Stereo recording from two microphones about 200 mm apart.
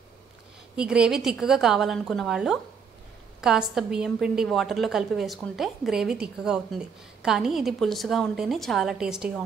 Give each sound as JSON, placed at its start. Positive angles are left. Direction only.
{"t": 0.7, "sound": "a woman's voice", "side_deg": -5}